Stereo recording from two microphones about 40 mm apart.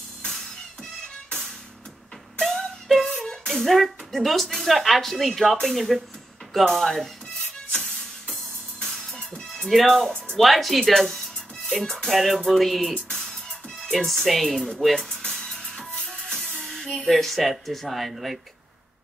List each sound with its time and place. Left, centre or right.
2.4 s music: centre
4.6 s speech: centre
9.5 s speech: centre
15.0 s music: centre
17.0 s speech: centre